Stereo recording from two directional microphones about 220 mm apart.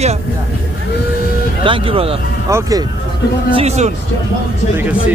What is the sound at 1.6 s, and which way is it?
Speech, 25° right (ahead or behind).